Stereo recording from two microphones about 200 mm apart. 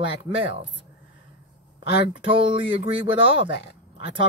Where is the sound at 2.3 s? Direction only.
25° right (ahead or behind).